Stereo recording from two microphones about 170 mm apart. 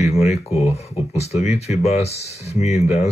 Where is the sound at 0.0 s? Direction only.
40° left (ahead or behind).